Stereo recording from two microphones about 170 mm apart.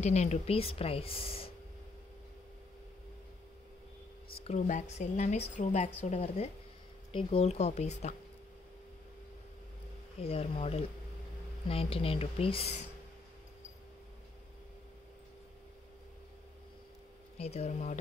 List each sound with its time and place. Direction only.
0.0 s speech: 40° left (ahead or behind)
4.4 s speech: 40° left (ahead or behind)
10.1 s speech: 35° left (ahead or behind)
17.4 s speech: 40° left (ahead or behind)